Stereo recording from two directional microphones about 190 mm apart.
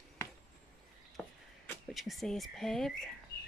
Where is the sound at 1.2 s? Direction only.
Centre (ahead or behind).